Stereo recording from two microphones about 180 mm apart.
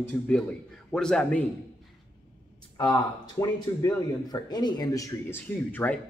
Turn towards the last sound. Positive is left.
turn(degrees=10)  # may be behind; listen again after turning